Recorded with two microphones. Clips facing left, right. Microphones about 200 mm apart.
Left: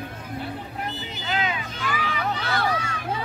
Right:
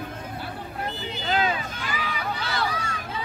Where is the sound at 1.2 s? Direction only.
35° right (ahead or behind).